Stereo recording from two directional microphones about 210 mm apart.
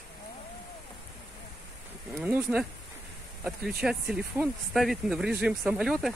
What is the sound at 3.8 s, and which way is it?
Speech, 5° right (ahead or behind).